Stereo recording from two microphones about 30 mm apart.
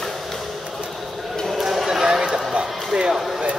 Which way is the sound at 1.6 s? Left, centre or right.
Centre.